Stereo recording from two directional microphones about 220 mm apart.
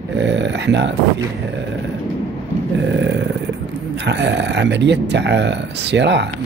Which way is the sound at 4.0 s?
50° right (ahead or behind).